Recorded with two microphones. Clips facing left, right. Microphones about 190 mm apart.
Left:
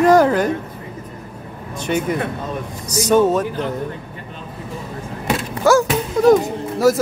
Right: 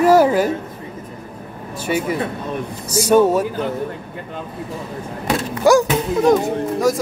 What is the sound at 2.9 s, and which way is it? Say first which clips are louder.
Speech: right 1 dB; 10° right (ahead or behind).